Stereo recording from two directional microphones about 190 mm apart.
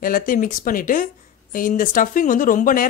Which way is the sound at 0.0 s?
45° left (ahead or behind).